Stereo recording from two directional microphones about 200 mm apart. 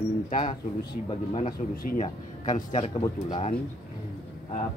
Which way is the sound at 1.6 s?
35° left (ahead or behind).